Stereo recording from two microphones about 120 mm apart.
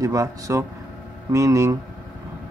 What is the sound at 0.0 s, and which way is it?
Speech, 25° right (ahead or behind).